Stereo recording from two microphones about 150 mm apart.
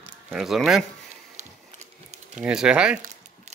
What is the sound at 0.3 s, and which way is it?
Speech, 5° right (ahead or behind).